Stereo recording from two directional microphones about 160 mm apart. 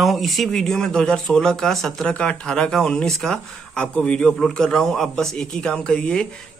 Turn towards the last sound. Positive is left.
turn(degrees=5)  # may be behind; listen again after turning